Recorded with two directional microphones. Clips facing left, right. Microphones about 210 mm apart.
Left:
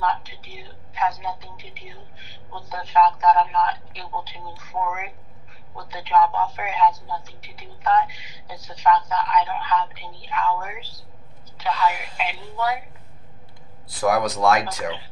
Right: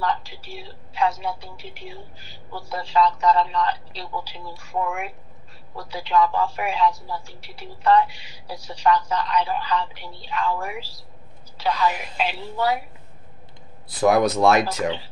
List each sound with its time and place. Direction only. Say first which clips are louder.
0.0 s a woman's voice: even; 30° right (ahead or behind)
13.8 s speech: right 3 dB; 25° right (ahead or behind)